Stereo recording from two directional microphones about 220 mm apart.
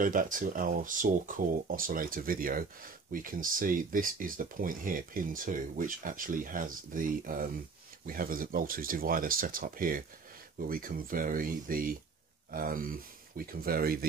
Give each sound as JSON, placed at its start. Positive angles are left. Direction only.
{"t": 0.0, "sound": "speech", "side_deg": -40}